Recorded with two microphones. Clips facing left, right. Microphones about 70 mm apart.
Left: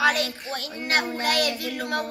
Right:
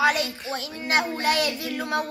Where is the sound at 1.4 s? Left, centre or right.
Left.